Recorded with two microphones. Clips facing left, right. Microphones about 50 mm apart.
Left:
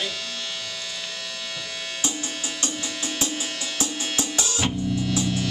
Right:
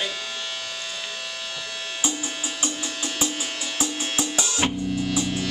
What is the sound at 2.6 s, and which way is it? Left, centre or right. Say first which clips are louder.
Music: right 1 dB; centre.